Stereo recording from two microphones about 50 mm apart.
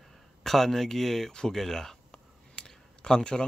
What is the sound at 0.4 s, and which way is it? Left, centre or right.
Speech, centre.